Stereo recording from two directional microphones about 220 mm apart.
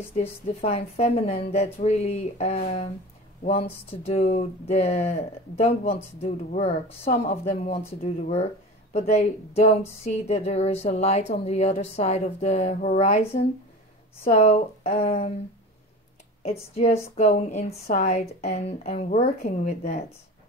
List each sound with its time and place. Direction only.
0.1 s a woman's voice: 30° left (ahead or behind)
16.4 s a woman's voice: 30° left (ahead or behind)